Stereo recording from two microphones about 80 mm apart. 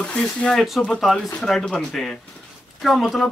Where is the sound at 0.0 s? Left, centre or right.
Centre.